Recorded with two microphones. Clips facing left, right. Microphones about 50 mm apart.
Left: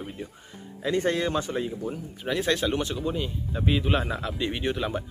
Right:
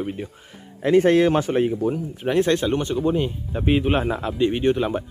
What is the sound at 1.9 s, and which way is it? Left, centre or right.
Speech, right.